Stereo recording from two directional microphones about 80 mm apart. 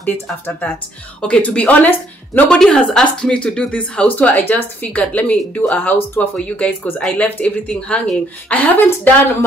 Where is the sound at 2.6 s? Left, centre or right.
Centre.